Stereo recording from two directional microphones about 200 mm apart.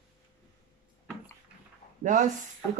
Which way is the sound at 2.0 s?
40° right (ahead or behind).